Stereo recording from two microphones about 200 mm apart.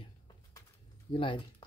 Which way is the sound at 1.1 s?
25° left (ahead or behind).